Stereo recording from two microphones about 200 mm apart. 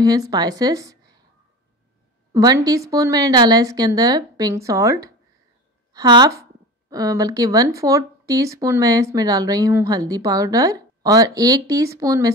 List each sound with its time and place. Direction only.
0.0 s speech: 15° right (ahead or behind)
2.3 s a woman's voice: 20° right (ahead or behind)